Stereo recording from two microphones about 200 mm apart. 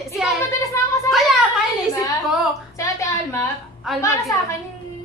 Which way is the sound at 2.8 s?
15° left (ahead or behind).